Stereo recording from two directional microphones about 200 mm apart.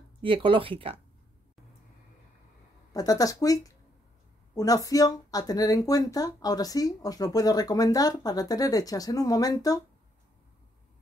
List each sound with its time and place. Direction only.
0.2 s speech: 25° right (ahead or behind)
2.9 s speech: 15° left (ahead or behind)